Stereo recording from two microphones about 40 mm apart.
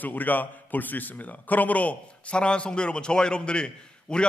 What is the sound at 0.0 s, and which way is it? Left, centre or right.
A man's voice, left.